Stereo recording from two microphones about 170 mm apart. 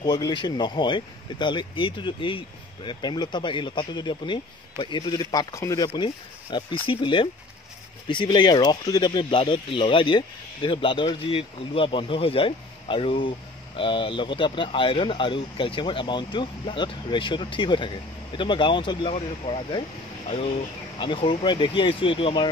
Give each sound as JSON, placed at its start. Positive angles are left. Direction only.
{"t": 0.0, "sound": "speech", "side_deg": 25}
{"t": 21.0, "sound": "speech", "side_deg": 30}